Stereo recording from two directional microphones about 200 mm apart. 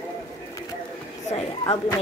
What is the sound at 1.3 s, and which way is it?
Speech, 30° left (ahead or behind).